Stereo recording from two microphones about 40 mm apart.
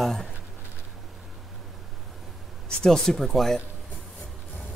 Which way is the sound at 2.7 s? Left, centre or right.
Centre.